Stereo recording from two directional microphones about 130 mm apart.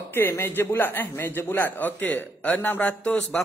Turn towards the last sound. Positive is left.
turn(degrees=10)  # may be behind; listen again after turning